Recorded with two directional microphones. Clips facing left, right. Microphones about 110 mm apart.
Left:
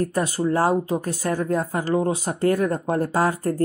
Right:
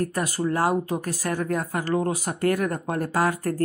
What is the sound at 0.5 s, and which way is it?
Speech, 30° left (ahead or behind).